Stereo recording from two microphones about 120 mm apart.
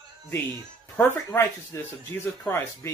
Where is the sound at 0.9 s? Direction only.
20° left (ahead or behind).